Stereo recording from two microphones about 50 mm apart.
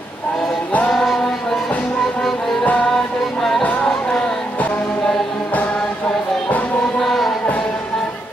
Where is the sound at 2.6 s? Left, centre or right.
Left.